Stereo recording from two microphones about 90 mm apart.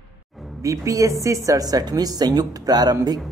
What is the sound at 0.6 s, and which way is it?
A woman's voice, 40° right (ahead or behind).